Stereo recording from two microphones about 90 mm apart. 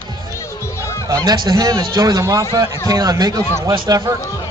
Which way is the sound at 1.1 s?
50° right (ahead or behind).